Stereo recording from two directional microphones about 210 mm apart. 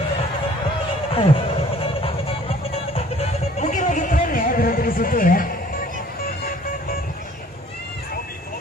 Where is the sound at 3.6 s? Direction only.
35° left (ahead or behind).